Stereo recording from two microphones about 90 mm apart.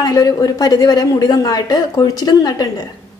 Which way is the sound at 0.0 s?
45° left (ahead or behind).